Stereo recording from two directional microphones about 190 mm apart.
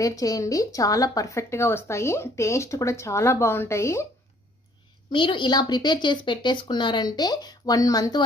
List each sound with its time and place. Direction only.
0.0 s speech: 20° left (ahead or behind)
5.1 s a woman's voice: 25° left (ahead or behind)